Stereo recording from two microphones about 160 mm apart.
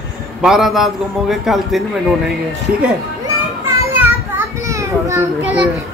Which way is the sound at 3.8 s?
15° right (ahead or behind).